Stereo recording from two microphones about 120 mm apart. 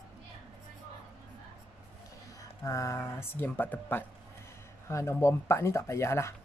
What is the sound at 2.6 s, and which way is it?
Speech, 25° left (ahead or behind).